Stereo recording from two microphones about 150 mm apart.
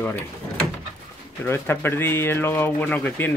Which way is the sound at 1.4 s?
15° left (ahead or behind).